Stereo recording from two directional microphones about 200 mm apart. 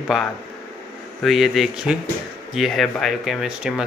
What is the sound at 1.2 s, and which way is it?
Speech, centre (ahead or behind).